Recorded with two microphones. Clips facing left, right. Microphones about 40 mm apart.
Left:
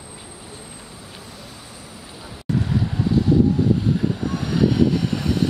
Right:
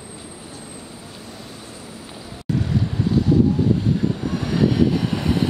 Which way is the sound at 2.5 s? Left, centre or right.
Centre.